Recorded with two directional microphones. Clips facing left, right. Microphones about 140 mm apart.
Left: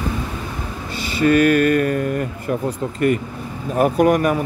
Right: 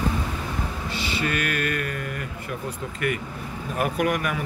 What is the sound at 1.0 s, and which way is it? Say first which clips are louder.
Speech: left 13 dB; 40° left (ahead or behind).